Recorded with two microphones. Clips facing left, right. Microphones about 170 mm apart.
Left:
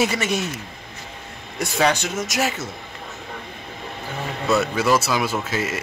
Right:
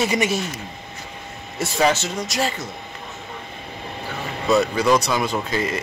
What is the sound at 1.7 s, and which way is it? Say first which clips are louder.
Speech: right 1 dB; centre (ahead or behind).